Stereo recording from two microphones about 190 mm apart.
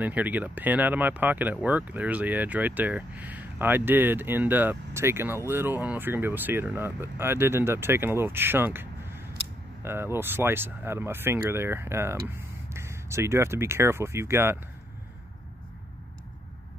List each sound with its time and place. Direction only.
0.0 s speech: 10° right (ahead or behind)